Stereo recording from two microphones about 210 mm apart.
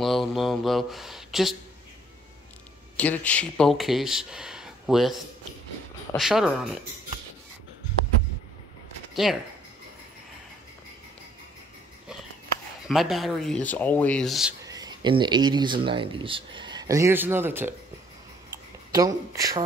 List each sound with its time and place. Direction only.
0.0 s speech: centre (ahead or behind)
3.0 s speech: 5° left (ahead or behind)
9.1 s speech: centre (ahead or behind)
12.8 s speech: centre (ahead or behind)
14.6 s speech: 20° right (ahead or behind)
18.9 s speech: 15° right (ahead or behind)